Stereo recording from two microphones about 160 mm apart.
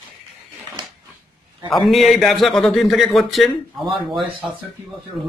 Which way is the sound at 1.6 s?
Centre (ahead or behind).